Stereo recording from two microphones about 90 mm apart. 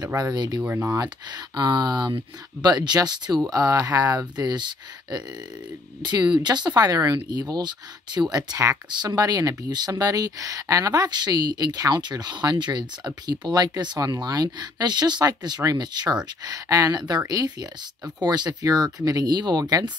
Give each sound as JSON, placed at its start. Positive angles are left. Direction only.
{"t": 0.2, "sound": "speech", "side_deg": -50}
{"t": 0.6, "sound": "speech", "side_deg": -25}
{"t": 0.9, "sound": "speech", "side_deg": -50}